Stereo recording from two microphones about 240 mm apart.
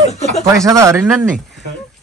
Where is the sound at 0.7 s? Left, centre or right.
Centre.